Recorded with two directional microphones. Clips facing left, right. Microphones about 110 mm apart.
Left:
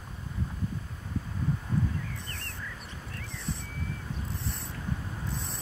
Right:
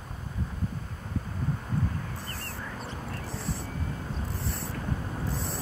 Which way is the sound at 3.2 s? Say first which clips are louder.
Right 5 dB; 35° right (ahead or behind).